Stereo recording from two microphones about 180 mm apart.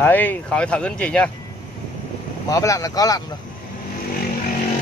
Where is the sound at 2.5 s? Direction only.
20° left (ahead or behind).